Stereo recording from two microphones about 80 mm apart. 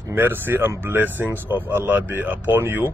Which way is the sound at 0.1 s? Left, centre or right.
Right.